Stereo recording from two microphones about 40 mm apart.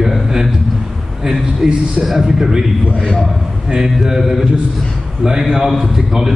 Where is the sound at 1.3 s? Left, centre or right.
Centre.